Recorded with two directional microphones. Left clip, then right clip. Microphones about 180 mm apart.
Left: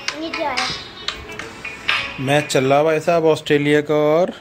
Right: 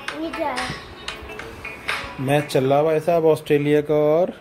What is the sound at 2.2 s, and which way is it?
Speech, centre (ahead or behind).